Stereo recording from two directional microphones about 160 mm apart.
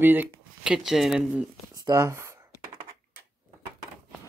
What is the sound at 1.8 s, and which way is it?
Speech, 15° right (ahead or behind).